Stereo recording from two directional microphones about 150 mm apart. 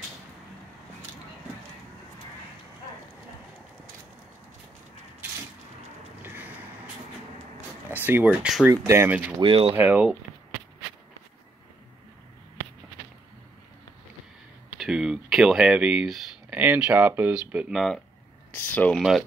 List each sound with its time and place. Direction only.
6.2 s vehicle: 10° right (ahead or behind)
7.9 s speech: 10° right (ahead or behind)
9.4 s speech: 40° right (ahead or behind)
9.8 s speech: 10° right (ahead or behind)
14.8 s speech: 5° right (ahead or behind)